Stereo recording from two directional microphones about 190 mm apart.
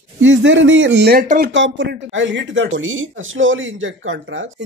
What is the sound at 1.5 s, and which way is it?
Speech, 75° right (ahead or behind).